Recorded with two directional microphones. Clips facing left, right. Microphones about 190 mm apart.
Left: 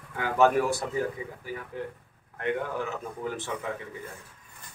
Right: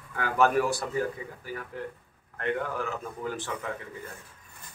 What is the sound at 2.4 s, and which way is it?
A man's voice, 15° left (ahead or behind).